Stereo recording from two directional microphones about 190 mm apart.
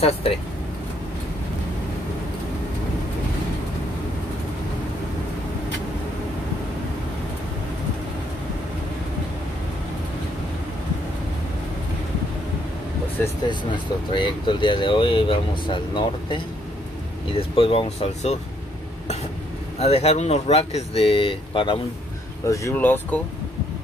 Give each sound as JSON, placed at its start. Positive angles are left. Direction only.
{"t": 0.0, "sound": "speech", "side_deg": 30}
{"t": 14.1, "sound": "speech", "side_deg": 25}
{"t": 17.4, "sound": "speech", "side_deg": 30}
{"t": 19.8, "sound": "speech", "side_deg": 35}
{"t": 22.5, "sound": "speech", "side_deg": 15}